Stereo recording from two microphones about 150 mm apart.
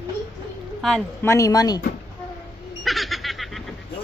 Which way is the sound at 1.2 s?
20° left (ahead or behind).